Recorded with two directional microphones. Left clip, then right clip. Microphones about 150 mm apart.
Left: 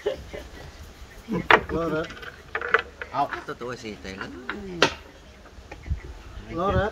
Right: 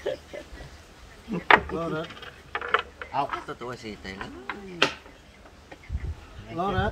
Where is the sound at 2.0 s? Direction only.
Centre (ahead or behind).